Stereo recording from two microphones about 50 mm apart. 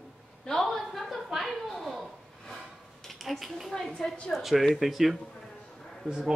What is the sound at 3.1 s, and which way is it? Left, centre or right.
Speech, centre.